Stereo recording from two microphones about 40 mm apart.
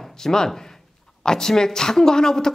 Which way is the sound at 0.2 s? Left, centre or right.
Centre.